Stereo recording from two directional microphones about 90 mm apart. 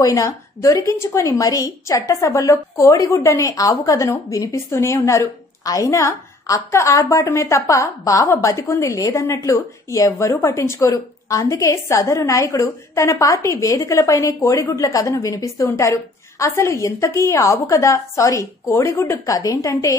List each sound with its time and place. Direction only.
0.0 s a woman's voice: 40° left (ahead or behind)